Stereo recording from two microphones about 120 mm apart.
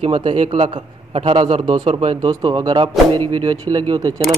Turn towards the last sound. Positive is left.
turn(degrees=-40)  # may be behind; listen again after turning